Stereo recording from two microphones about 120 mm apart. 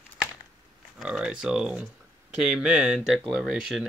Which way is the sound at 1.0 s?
5° right (ahead or behind).